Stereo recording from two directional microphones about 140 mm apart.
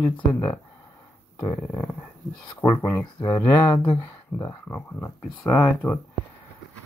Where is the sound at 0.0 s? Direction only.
15° left (ahead or behind).